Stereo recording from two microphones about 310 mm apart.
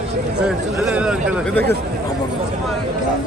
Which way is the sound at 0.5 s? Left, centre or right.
Centre.